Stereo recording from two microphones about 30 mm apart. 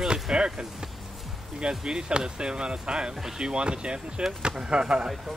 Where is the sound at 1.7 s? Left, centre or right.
Right.